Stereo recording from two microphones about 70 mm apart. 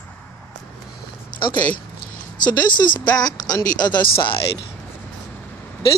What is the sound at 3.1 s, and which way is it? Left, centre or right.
Speech, left.